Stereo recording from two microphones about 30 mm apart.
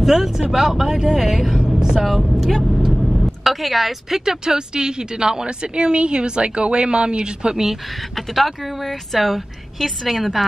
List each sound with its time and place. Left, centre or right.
0.0 s a woman's voice: centre
2.9 s vehicle: centre
4.2 s a woman's voice: centre
8.4 s a woman's voice: centre